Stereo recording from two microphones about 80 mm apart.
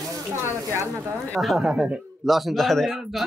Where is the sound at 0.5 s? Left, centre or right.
Right.